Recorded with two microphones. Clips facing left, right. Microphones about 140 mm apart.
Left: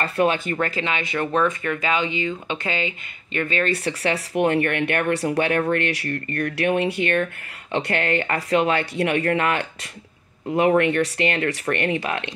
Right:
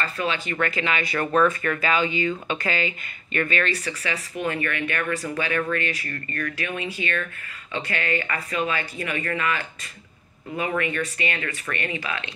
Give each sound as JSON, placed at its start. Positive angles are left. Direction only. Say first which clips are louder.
{"t": 0.0, "sound": "speech", "louder": "left 6 dB", "side_deg": 55}
{"t": 0.6, "sound": "speech", "louder": "left 1 dB", "side_deg": 30}
{"t": 3.6, "sound": "speech", "louder": "left 5 dB", "side_deg": 60}
{"t": 10.8, "sound": "speech", "louder": "left 7 dB", "side_deg": 65}